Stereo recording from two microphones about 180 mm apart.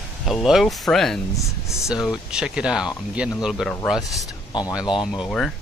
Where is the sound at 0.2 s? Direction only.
Centre (ahead or behind).